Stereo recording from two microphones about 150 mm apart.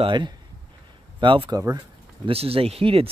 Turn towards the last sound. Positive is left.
turn(degrees=-40)  # may be behind; listen again after turning